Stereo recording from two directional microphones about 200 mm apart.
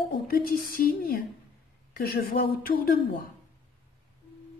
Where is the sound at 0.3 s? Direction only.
45° left (ahead or behind).